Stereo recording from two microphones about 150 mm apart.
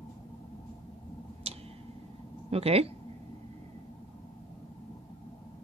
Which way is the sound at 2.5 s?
40° right (ahead or behind).